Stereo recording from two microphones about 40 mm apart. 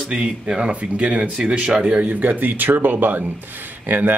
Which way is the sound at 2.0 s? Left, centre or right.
Right.